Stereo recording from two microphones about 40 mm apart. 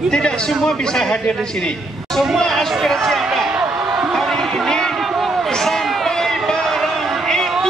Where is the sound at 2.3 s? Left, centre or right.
Centre.